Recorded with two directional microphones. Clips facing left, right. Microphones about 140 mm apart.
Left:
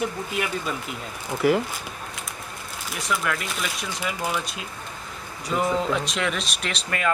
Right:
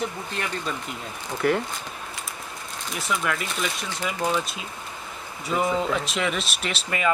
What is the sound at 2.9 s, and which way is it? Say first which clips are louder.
Speech: even; centre (ahead or behind).